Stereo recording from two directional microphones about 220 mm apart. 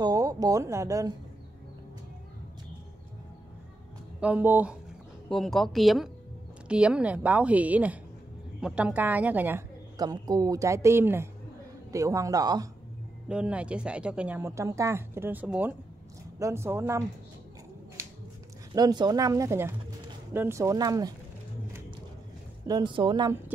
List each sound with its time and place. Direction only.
0.0 s speech: 15° right (ahead or behind)
4.2 s a woman's voice: 10° right (ahead or behind)
13.3 s a woman's voice: 5° right (ahead or behind)
18.7 s a woman's voice: 20° right (ahead or behind)
22.7 s speech: 20° right (ahead or behind)